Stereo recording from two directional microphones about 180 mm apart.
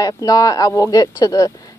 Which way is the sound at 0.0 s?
20° left (ahead or behind).